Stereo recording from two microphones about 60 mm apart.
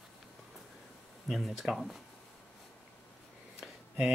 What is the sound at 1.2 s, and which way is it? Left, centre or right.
Speech, centre.